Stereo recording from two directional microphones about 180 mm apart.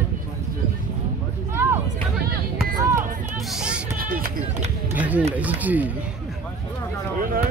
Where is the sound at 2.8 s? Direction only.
15° right (ahead or behind).